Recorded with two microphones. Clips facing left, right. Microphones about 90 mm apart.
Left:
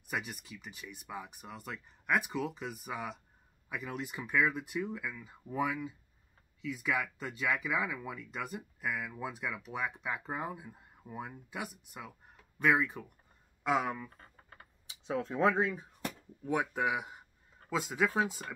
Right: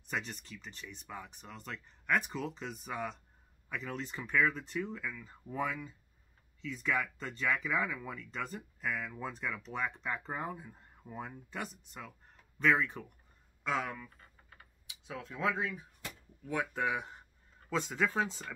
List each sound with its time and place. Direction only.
0.0 s speech: 5° left (ahead or behind)
13.7 s speech: 15° left (ahead or behind)
14.0 s typing: 40° left (ahead or behind); by 17.2 s 10° left (ahead or behind)
17.6 s speech: 5° left (ahead or behind)